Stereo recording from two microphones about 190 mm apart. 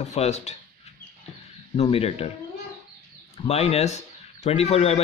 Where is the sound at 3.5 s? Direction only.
35° left (ahead or behind).